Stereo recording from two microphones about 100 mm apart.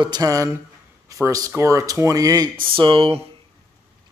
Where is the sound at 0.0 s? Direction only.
45° right (ahead or behind).